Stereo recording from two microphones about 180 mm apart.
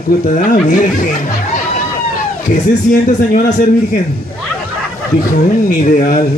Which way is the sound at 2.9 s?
50° left (ahead or behind).